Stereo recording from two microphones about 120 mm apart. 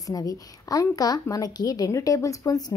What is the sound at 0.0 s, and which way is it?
A woman's voice, 30° left (ahead or behind).